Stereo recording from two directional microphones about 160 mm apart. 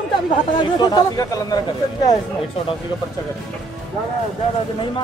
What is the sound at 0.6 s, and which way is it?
Speech, 25° left (ahead or behind).